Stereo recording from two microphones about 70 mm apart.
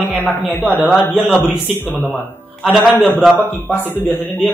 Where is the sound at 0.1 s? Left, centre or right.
Left.